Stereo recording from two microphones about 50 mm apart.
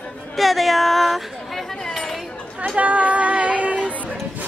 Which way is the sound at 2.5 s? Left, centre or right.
Right.